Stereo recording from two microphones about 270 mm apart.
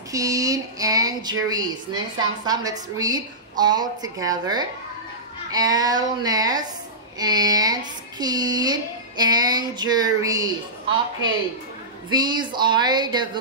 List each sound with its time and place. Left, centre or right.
0.1 s speech: centre
12.1 s speech: centre